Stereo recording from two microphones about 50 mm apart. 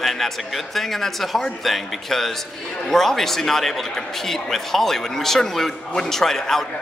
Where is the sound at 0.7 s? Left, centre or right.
Centre.